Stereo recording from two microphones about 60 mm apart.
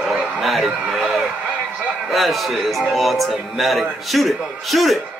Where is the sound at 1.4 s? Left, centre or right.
Right.